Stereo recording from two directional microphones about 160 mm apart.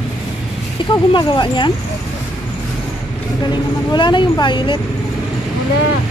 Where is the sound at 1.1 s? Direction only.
30° left (ahead or behind).